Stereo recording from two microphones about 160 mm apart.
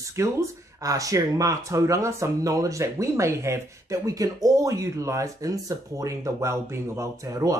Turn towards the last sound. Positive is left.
turn(degrees=-20)  # may be behind; listen again after turning